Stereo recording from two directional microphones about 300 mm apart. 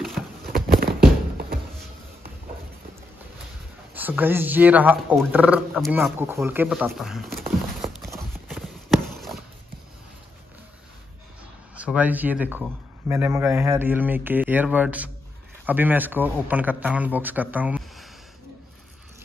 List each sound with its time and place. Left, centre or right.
0.5 s music: right
3.9 s a sound: centre
11.7 s speech: centre